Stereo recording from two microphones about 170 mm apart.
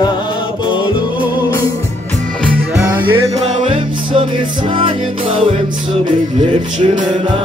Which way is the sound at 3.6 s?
35° right (ahead or behind).